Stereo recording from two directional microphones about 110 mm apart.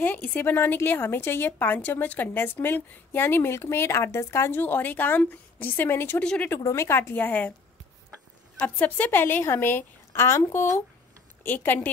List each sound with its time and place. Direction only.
0.0 s a woman's voice: 15° left (ahead or behind)
6.2 s a woman's voice: 10° left (ahead or behind)
6.5 s a woman's voice: 25° left (ahead or behind)
8.5 s a woman's voice: 15° left (ahead or behind)